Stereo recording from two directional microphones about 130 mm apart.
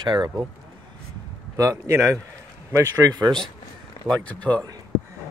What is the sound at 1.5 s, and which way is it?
Speech, 20° right (ahead or behind).